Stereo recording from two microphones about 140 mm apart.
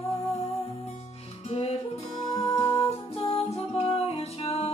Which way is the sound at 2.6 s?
30° left (ahead or behind).